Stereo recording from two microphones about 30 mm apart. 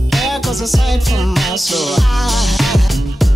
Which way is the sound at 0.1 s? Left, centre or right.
Centre.